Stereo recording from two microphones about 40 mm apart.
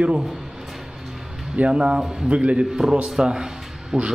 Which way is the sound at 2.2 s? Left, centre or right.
Right.